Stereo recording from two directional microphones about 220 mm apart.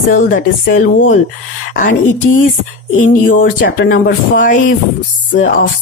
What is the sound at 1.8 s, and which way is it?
A woman's voice, 35° left (ahead or behind).